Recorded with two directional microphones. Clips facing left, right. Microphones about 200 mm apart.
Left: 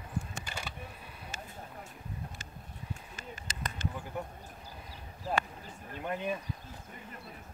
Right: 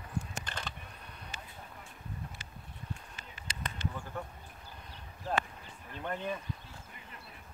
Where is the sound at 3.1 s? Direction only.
45° left (ahead or behind).